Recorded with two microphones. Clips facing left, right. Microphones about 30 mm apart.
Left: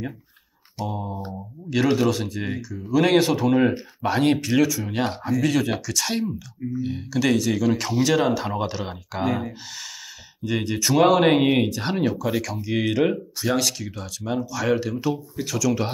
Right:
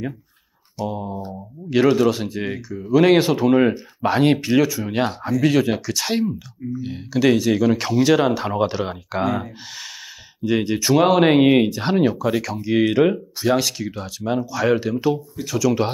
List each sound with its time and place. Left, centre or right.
0.8 s speech: centre
1.7 s speech: centre
9.2 s speech: centre
10.4 s speech: centre